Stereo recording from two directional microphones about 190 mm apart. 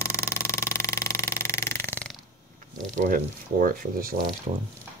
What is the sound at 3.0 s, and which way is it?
Speech, 45° right (ahead or behind).